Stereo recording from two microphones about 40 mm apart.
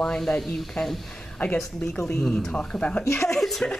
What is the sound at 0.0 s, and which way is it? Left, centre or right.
Speech, centre.